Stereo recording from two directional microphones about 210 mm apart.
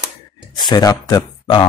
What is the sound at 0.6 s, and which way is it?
Speech, 20° left (ahead or behind).